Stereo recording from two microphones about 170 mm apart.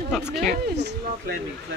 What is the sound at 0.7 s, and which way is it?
Speech, 75° right (ahead or behind).